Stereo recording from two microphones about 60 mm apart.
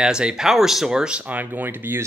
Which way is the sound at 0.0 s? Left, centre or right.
Centre.